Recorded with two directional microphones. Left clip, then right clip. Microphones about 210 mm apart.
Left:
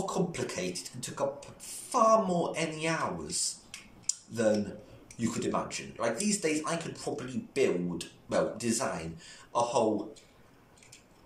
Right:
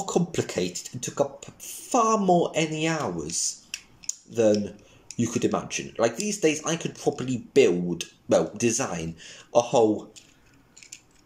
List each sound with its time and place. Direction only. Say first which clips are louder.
0.0 s speech: right 6 dB; 45° right (ahead or behind)
4.1 s a sound: right 7 dB; 45° right (ahead or behind)
5.1 s speech: right 6 dB; 40° right (ahead or behind)